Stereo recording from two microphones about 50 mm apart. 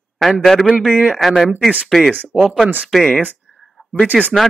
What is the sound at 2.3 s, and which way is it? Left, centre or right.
Speech, centre.